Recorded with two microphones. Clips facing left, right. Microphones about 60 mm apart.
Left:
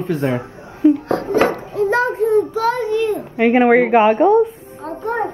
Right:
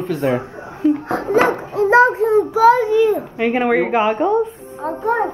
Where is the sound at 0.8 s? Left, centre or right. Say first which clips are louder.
Left 3 dB; centre.